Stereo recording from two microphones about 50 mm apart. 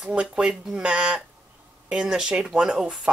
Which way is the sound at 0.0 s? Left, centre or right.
Centre.